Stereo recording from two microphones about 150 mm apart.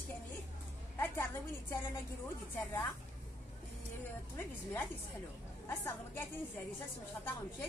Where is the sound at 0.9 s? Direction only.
15° left (ahead or behind).